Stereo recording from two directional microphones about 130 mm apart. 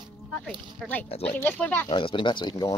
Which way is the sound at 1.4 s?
10° left (ahead or behind).